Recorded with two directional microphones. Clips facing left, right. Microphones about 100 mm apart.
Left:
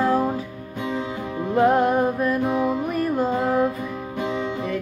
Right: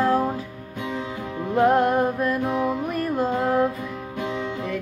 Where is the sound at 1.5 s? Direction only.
Centre (ahead or behind).